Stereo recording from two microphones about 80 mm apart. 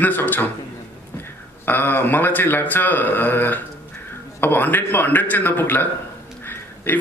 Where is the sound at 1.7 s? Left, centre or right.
Left.